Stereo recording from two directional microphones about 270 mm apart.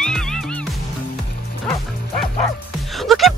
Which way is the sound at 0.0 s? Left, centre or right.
Centre.